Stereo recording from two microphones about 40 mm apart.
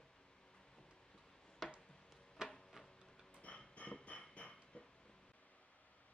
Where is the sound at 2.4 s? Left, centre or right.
Centre.